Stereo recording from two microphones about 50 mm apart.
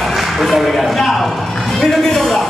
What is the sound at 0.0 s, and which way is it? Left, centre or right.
Speech, centre.